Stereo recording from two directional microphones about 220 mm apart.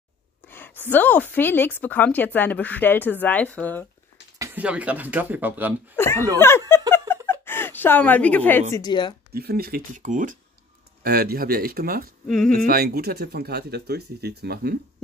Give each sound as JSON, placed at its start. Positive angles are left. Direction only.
{"t": 0.5, "sound": "a woman's voice", "side_deg": 10}
{"t": 4.4, "sound": "speech", "side_deg": -5}
{"t": 5.9, "sound": "a woman's voice", "side_deg": 10}
{"t": 7.2, "sound": "a sound", "side_deg": 10}
{"t": 8.7, "sound": "a woman's voice", "side_deg": 20}
{"t": 9.3, "sound": "speech", "side_deg": -45}